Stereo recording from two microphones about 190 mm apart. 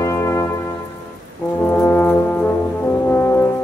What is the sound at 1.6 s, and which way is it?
Brass instrument, 10° left (ahead or behind).